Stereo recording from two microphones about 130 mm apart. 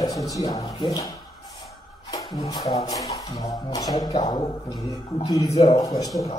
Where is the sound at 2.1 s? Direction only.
30° left (ahead or behind).